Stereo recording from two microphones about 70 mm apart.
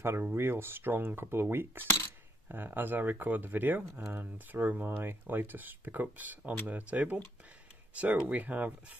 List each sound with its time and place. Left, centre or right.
0.2 s speech: right